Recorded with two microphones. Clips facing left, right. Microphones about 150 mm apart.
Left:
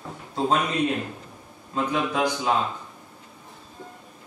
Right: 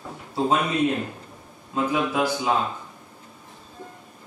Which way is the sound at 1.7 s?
5° right (ahead or behind).